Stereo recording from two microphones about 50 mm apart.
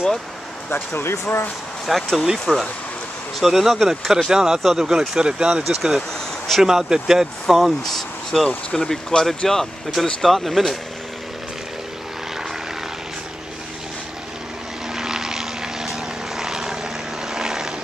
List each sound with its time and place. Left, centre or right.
0.7 s speech: left
1.9 s speech: centre
5.6 s speech: centre
15.0 s vehicle: centre